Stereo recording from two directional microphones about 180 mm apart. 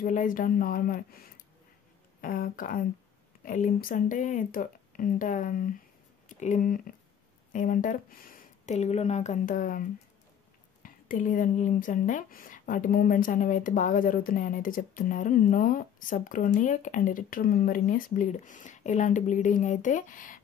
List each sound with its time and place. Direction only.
0.0 s speech: 45° left (ahead or behind)